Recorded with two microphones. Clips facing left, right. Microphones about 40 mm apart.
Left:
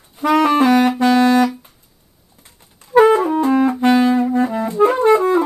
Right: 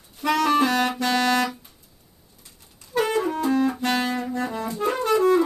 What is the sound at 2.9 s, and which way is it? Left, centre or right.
Music, left.